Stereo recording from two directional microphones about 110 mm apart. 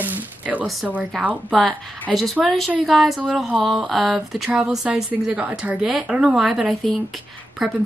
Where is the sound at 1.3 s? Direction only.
10° left (ahead or behind).